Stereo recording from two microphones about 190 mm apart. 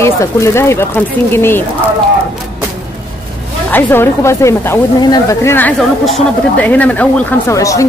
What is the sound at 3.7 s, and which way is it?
A woman's voice, 10° left (ahead or behind).